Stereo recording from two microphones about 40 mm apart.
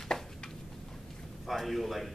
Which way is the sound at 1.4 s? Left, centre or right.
Centre.